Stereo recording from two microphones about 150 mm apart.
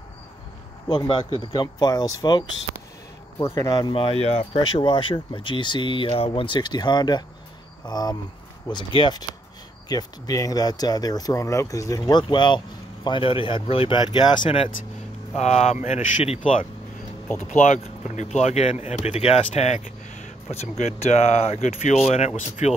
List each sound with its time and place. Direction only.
0.8 s speech: 30° left (ahead or behind)
3.9 s speech: 40° left (ahead or behind)
15.3 s speech: 50° left (ahead or behind)